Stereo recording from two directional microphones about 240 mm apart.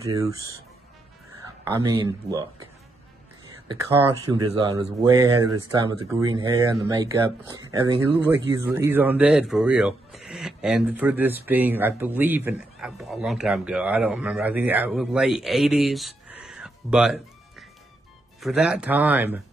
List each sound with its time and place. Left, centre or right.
0.0 s speech: centre
1.6 s speech: centre
3.6 s speech: centre